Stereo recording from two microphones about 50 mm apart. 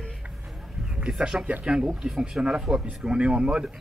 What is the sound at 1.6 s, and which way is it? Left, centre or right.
Speech, centre.